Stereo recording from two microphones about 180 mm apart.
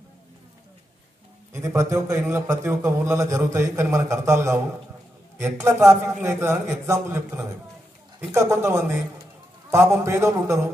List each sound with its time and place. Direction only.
1.5 s a man's voice: 15° right (ahead or behind)
5.6 s a man's voice: 15° right (ahead or behind)